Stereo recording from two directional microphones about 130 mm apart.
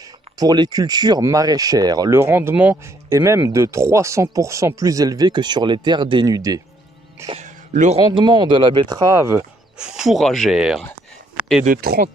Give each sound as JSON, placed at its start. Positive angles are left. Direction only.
{"t": 0.4, "sound": "speech", "side_deg": -30}
{"t": 2.1, "sound": "speech", "side_deg": -20}
{"t": 7.3, "sound": "music", "side_deg": -70}
{"t": 8.1, "sound": "speech", "side_deg": -35}
{"t": 9.8, "sound": "speech", "side_deg": -5}
{"t": 11.4, "sound": "a sound", "side_deg": -10}